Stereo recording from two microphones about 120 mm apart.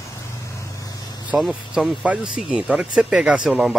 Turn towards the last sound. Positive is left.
turn(degrees=-5)  # may be behind; listen again after turning